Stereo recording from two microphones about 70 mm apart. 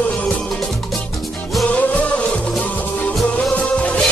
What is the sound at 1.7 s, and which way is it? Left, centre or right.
Music, left.